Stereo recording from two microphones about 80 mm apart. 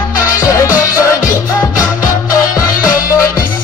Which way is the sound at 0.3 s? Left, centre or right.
Left.